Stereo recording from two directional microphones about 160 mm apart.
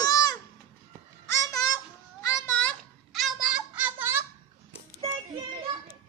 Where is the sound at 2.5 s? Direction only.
10° left (ahead or behind).